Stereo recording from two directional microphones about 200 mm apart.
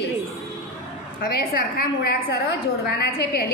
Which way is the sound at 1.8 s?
45° left (ahead or behind).